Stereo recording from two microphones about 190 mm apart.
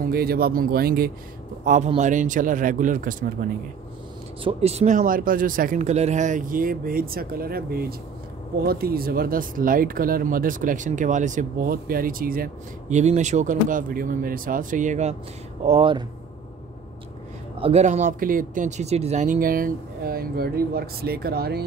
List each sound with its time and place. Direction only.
0.0 s speech: 55° right (ahead or behind)
1.6 s a man's voice: 40° right (ahead or behind)
4.4 s speech: 30° right (ahead or behind); by 12.4 s 50° right (ahead or behind)
12.9 s speech: 40° right (ahead or behind)
17.6 s speech: 30° right (ahead or behind); by 21.6 s 55° right (ahead or behind)